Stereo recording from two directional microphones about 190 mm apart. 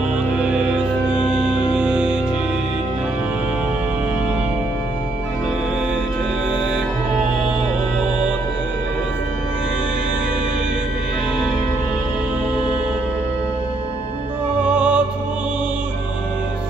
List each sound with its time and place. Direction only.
0.4 s music: 5° right (ahead or behind)
1.1 s music: 25° left (ahead or behind)
1.8 s music: 5° right (ahead or behind)
14.6 s music: 5° right (ahead or behind)